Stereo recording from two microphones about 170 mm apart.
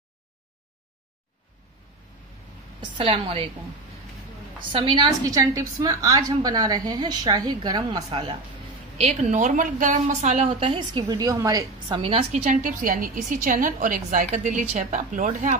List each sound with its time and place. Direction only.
2.8 s a woman's voice: 35° right (ahead or behind)
4.7 s a woman's voice: 30° right (ahead or behind)
8.1 s a woman's voice: 35° right (ahead or behind)
9.0 s a woman's voice: 45° right (ahead or behind); by 12.0 s 20° right (ahead or behind)
12.0 s a woman's voice: 35° right (ahead or behind)